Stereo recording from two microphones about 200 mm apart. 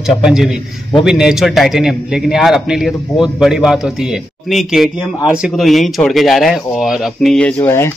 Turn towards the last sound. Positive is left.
turn(degrees=10)  # may be behind; listen again after turning